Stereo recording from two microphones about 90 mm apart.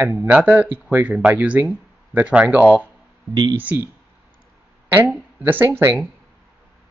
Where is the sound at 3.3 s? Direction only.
55° right (ahead or behind).